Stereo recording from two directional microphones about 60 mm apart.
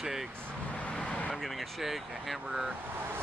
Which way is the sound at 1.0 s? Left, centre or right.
Centre.